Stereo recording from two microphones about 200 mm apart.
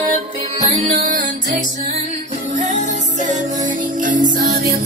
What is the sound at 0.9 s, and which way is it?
Music, 45° right (ahead or behind).